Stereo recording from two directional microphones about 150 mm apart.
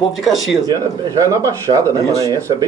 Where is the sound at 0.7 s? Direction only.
20° right (ahead or behind).